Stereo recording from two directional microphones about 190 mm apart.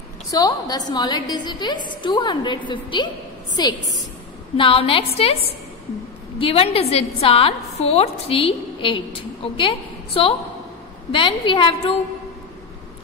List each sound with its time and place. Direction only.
0.3 s a woman's voice: 20° left (ahead or behind)
6.4 s a woman's voice: 30° left (ahead or behind)